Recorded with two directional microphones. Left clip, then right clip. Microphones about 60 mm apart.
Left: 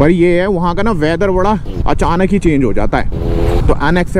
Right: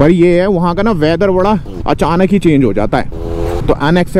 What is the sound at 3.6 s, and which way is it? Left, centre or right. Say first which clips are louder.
Speech: right 4 dB; right.